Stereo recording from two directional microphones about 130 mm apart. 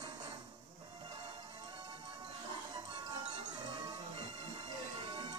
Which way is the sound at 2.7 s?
35° right (ahead or behind).